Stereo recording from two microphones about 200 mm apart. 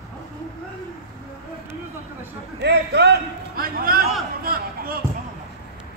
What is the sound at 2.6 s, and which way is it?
A man's voice, 55° right (ahead or behind).